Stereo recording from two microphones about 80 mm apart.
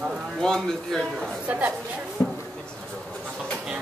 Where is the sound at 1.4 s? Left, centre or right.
Centre.